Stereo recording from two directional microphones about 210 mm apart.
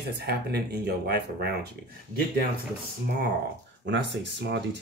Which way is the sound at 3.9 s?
55° right (ahead or behind).